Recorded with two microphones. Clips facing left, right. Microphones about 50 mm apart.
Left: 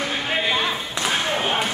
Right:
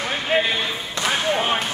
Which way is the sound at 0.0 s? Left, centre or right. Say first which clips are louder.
Right 3 dB; centre.